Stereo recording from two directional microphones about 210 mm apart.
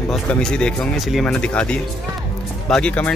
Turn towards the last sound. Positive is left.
turn(degrees=5)  # may be behind; listen again after turning